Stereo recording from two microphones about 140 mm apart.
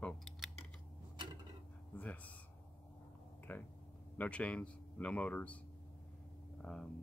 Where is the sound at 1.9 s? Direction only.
10° left (ahead or behind).